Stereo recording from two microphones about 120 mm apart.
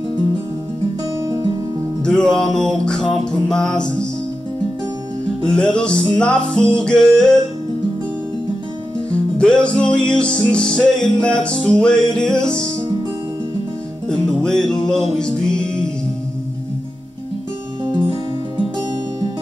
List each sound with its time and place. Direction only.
1.2 s music: 35° right (ahead or behind)
2.0 s music: 5° left (ahead or behind)
5.4 s music: 5° left (ahead or behind)
9.4 s music: 5° left (ahead or behind)
14.0 s music: 5° left (ahead or behind)